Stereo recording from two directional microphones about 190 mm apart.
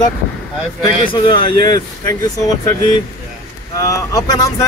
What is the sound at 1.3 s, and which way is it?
Speech, 25° left (ahead or behind).